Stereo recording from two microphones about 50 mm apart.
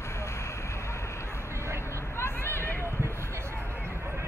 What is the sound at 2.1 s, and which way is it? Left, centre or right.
Hubbub, left.